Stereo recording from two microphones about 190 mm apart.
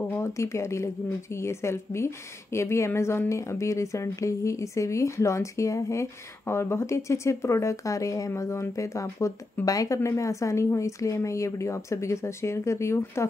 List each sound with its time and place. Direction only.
0.1 s a woman's voice: 15° left (ahead or behind)